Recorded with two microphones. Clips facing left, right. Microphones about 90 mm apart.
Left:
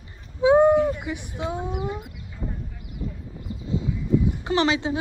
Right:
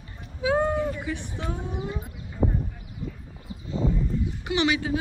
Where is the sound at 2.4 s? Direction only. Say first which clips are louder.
Right 8 dB; 55° right (ahead or behind).